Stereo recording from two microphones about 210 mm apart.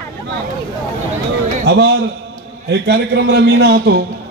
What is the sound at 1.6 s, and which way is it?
A man's voice, 55° right (ahead or behind).